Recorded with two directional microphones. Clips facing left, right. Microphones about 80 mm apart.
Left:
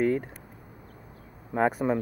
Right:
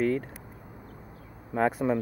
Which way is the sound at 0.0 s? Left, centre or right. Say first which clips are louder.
Left 1 dB; centre.